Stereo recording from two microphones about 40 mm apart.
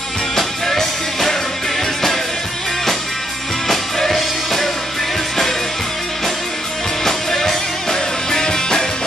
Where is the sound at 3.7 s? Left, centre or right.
Centre.